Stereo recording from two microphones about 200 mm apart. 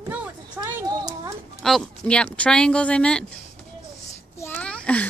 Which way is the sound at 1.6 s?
5° left (ahead or behind).